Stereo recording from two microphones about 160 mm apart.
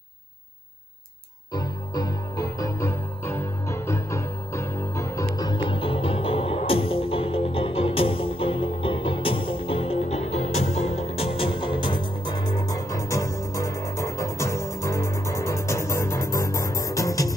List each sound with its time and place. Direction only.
1.5 s music: 25° left (ahead or behind)